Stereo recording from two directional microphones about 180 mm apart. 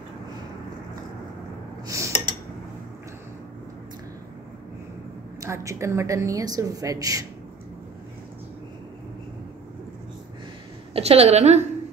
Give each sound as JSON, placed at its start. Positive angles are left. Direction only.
{"t": 1.9, "sound": "a sound", "side_deg": -15}
{"t": 5.4, "sound": "a woman's voice", "side_deg": -15}
{"t": 10.9, "sound": "a woman's voice", "side_deg": -35}